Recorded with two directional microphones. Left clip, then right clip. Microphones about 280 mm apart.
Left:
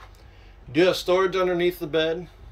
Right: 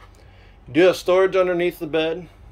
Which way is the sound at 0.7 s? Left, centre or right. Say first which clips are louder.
Right 4 dB; centre.